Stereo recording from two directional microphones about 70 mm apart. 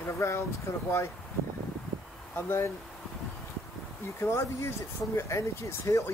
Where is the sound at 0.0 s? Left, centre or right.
Left.